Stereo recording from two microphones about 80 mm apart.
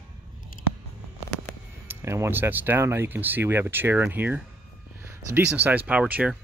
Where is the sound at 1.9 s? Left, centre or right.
Right.